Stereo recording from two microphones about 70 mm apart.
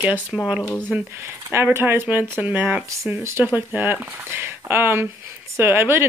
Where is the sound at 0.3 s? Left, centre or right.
Centre.